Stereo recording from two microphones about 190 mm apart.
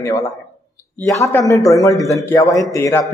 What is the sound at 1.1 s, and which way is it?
A man's voice, 15° left (ahead or behind).